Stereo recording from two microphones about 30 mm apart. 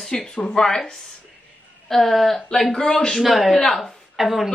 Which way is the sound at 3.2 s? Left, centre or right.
Centre.